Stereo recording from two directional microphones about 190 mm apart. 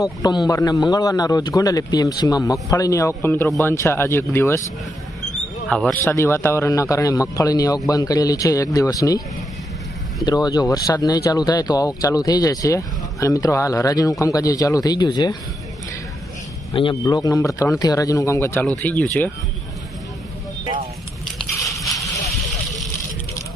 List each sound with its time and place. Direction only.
0.5 s speech: 20° left (ahead or behind)
5.7 s speech: 5° left (ahead or behind)
10.2 s speech: 20° left (ahead or behind)
16.7 s speech: 25° left (ahead or behind)
21.5 s a sound: 15° left (ahead or behind)